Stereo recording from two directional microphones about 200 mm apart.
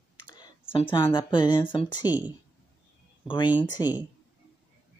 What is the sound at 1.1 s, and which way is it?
Speech, 25° left (ahead or behind).